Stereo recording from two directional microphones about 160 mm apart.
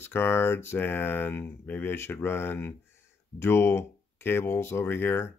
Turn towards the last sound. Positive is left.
turn(degrees=15)  # may be behind; listen again after turning